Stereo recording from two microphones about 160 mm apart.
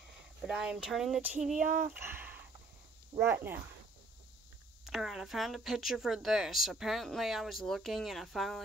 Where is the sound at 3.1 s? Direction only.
35° right (ahead or behind).